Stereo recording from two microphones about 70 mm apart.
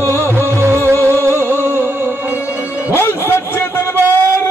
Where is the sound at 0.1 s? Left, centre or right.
Right.